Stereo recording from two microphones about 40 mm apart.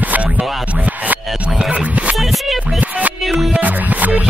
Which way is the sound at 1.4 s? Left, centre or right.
Right.